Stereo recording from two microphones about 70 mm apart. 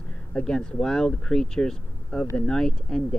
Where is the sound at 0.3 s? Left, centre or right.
Centre.